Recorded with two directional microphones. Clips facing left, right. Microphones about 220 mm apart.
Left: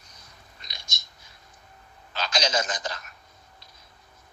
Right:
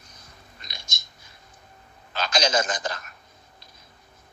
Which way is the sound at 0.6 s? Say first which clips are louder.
Right 2 dB; 50° right (ahead or behind).